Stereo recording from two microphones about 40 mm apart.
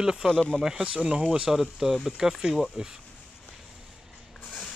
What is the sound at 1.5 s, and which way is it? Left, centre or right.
Speech, centre.